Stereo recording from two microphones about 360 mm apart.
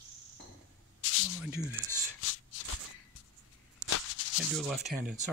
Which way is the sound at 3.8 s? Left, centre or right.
Left.